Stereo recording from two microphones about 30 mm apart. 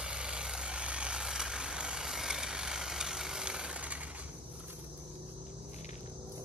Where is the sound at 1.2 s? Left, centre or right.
Centre.